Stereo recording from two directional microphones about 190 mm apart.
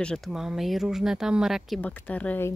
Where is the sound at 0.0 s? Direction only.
Centre (ahead or behind).